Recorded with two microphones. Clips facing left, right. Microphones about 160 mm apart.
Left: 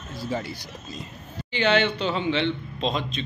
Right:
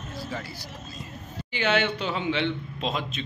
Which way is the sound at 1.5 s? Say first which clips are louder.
Left 3 dB; 10° right (ahead or behind).